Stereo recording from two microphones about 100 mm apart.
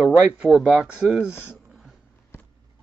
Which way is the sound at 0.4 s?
5° right (ahead or behind).